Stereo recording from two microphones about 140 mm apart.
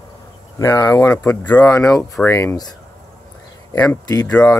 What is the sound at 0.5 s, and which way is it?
Speech, 25° left (ahead or behind).